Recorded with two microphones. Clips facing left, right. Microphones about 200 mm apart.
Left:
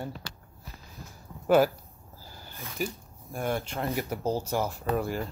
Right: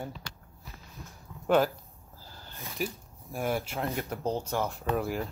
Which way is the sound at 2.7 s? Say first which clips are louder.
Left 1 dB; centre (ahead or behind).